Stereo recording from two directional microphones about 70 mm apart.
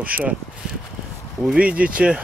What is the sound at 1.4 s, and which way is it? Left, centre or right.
Speech, centre.